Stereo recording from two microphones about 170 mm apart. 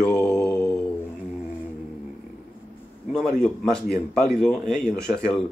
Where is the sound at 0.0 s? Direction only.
5° left (ahead or behind).